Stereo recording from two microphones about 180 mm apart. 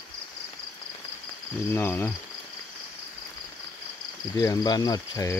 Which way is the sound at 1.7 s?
10° left (ahead or behind).